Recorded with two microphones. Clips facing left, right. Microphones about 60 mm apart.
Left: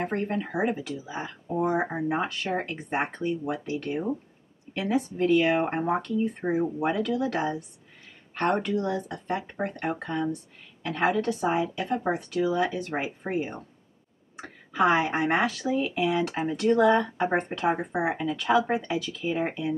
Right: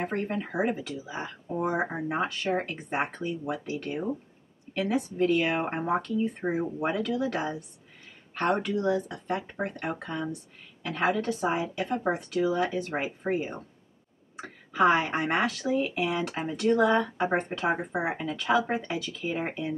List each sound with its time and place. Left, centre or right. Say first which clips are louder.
0.1 s speech: left 2 dB; left
1.1 s a woman's voice: left 3 dB; centre
15.9 s speech: left 3 dB; centre